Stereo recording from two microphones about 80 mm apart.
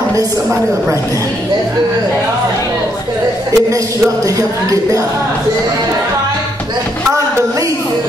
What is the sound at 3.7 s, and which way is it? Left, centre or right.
Music, right.